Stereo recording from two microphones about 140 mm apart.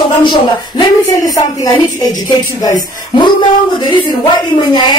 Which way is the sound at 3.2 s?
30° left (ahead or behind).